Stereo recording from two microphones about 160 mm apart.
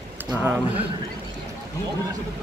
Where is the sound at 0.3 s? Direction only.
10° right (ahead or behind).